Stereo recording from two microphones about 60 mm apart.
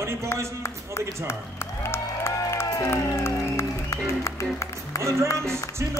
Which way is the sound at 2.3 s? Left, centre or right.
Left.